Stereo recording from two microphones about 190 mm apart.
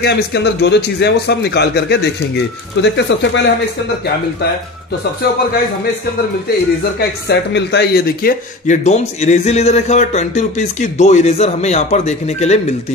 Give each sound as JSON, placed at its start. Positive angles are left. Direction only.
{"t": 0.0, "sound": "a man's voice", "side_deg": 60}
{"t": 7.0, "sound": "a man's voice", "side_deg": 60}
{"t": 8.8, "sound": "speech", "side_deg": 35}